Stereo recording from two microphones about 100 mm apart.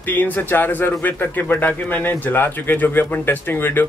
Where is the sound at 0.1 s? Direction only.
20° left (ahead or behind).